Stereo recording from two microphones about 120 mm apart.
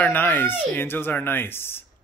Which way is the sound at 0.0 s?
15° left (ahead or behind).